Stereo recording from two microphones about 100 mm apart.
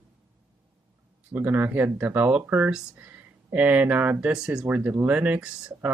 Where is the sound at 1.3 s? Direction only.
20° right (ahead or behind).